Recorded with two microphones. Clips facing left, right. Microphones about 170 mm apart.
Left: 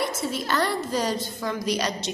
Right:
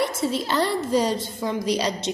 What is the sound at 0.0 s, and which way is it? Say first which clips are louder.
A woman's voice: right 4 dB; 25° right (ahead or behind).